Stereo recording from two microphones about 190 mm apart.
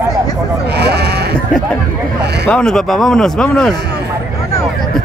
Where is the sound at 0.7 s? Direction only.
60° right (ahead or behind).